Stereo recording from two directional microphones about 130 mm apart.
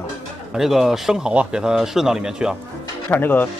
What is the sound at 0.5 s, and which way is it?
Speech, 5° right (ahead or behind).